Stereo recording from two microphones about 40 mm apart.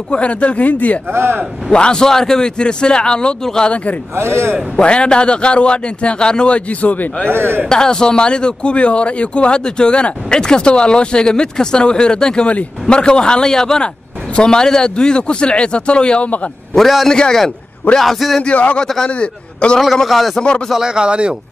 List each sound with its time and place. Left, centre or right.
0.1 s speech: left
0.7 s speech: left
1.1 s a man's voice: right
1.7 s speech: left
4.7 s speech: left
6.8 s speech: left
7.2 s a man's voice: right
7.7 s speech: centre
18.0 s speech: centre
18.4 s a man's voice: left
20.1 s speech: centre
20.8 s speech: right